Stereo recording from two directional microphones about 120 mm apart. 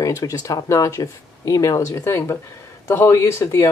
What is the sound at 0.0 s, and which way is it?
Speech, 25° left (ahead or behind).